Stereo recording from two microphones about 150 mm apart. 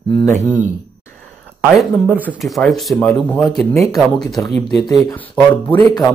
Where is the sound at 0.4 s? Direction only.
55° right (ahead or behind).